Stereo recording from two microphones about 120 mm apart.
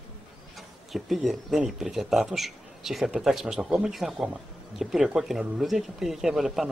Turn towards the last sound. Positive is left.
turn(degrees=-5)  # may be behind; listen again after turning